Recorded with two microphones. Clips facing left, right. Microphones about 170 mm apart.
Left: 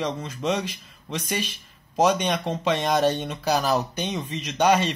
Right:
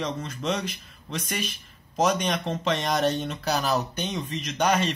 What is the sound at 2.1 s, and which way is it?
Speech, 15° left (ahead or behind).